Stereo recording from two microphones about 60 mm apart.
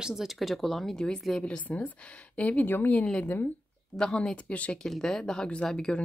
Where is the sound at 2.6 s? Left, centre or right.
Left.